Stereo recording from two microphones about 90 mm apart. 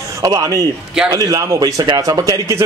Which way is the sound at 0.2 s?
40° right (ahead or behind).